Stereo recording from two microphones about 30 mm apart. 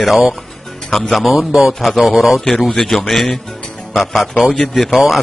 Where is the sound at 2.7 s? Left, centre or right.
Centre.